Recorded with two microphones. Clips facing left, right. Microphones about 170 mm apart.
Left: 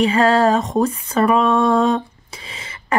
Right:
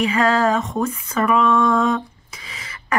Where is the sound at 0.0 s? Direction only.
30° left (ahead or behind).